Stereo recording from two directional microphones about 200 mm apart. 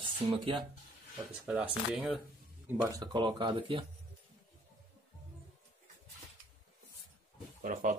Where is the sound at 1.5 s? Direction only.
5° right (ahead or behind).